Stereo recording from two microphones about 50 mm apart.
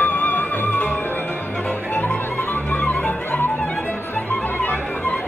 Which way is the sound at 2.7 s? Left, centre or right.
Left.